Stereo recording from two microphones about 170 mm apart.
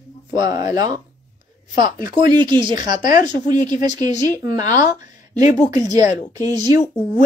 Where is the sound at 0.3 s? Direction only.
25° right (ahead or behind).